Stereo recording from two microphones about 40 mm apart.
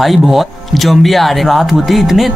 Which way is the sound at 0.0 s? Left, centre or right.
Centre.